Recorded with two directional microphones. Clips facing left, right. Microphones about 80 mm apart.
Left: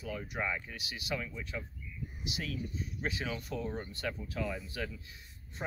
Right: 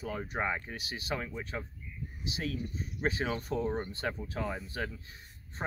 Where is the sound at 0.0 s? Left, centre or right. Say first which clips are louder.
Right 3 dB; right.